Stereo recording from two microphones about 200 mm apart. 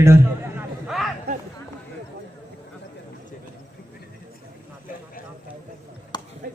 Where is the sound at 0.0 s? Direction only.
10° right (ahead or behind).